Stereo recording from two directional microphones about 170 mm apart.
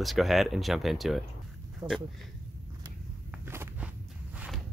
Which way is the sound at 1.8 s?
20° right (ahead or behind).